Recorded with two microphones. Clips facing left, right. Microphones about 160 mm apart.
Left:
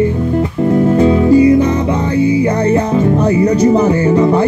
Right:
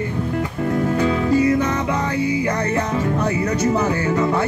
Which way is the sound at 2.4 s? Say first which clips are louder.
Left 8 dB; 30° left (ahead or behind).